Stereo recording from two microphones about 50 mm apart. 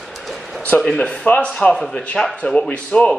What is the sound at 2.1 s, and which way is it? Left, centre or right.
Speech, centre.